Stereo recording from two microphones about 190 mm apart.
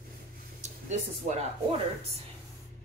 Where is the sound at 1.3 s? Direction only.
40° right (ahead or behind).